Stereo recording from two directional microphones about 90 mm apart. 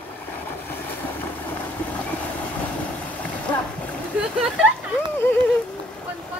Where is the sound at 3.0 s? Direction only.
15° left (ahead or behind).